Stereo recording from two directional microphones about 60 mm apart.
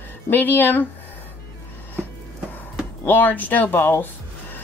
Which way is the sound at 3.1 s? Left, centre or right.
Left.